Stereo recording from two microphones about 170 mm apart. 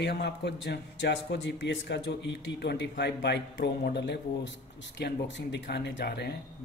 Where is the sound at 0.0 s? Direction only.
85° left.